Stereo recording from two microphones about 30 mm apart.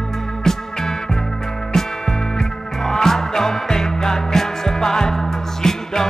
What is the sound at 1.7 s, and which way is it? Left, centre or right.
Music, centre.